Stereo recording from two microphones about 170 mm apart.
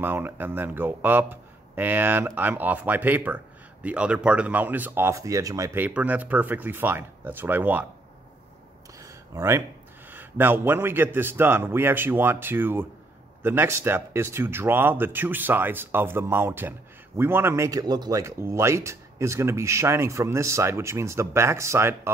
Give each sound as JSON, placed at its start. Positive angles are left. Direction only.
{"t": 0.0, "sound": "speech", "side_deg": -10}
{"t": 9.0, "sound": "a sound", "side_deg": -20}
{"t": 10.0, "sound": "speech", "side_deg": -10}